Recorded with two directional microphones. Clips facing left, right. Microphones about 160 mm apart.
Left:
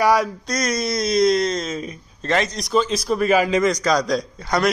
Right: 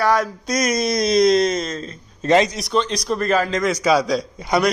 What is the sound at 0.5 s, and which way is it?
Speech, 10° right (ahead or behind).